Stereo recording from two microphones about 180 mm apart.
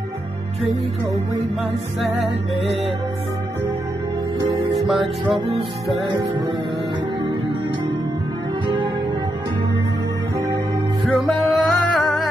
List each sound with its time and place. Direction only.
4.4 s music: 30° right (ahead or behind)
4.7 s music: centre (ahead or behind)
6.0 s music: 25° right (ahead or behind)
11.2 s music: centre (ahead or behind)